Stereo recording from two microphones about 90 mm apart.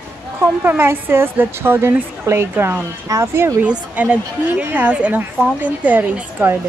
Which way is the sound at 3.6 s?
15° right (ahead or behind).